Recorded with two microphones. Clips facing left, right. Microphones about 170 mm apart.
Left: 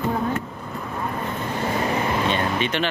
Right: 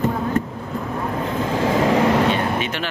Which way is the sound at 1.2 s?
90° right.